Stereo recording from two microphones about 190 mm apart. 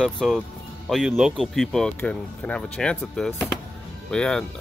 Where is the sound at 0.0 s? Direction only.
Centre (ahead or behind).